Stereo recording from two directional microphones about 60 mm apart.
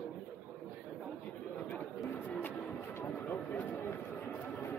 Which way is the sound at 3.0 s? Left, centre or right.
Left.